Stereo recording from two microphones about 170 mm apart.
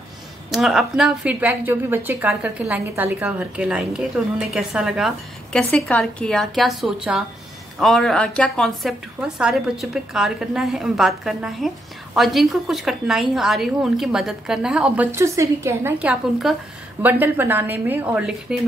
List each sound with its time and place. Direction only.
0.5 s a woman's voice: centre (ahead or behind)